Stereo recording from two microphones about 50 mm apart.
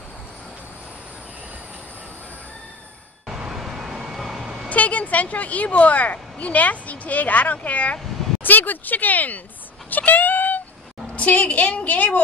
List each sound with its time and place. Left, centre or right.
3.3 s vehicle: centre
4.6 s speech: left
9.8 s a sound: left
11.1 s a woman's voice: left